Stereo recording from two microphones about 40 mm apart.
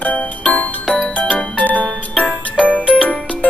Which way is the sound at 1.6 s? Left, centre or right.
Left.